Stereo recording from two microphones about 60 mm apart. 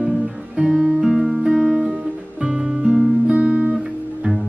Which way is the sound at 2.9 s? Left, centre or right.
Centre.